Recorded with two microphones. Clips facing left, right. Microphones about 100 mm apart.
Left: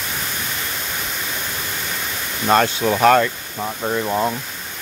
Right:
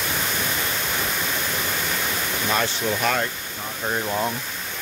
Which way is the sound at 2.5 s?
60° left (ahead or behind).